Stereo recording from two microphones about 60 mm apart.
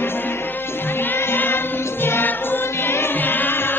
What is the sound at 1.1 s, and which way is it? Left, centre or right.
Music, left.